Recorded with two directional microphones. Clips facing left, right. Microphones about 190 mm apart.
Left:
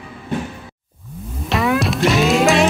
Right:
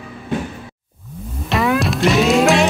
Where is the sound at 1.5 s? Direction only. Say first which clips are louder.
Right 1 dB; centre (ahead or behind).